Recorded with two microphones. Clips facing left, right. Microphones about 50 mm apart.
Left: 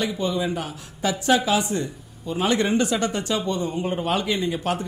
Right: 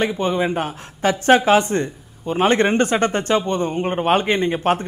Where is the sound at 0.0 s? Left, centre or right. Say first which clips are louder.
Right 5 dB; right.